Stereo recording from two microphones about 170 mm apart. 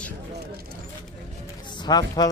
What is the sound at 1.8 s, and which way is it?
Speech, 25° left (ahead or behind).